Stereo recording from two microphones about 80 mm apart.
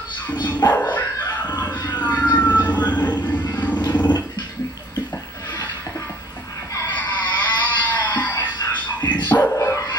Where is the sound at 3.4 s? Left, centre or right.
Left.